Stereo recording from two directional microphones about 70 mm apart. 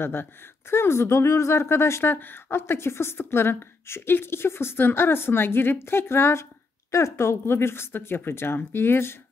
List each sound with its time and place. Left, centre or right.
0.0 s speech: left